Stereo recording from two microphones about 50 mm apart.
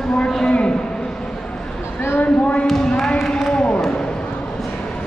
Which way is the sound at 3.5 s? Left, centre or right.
Left.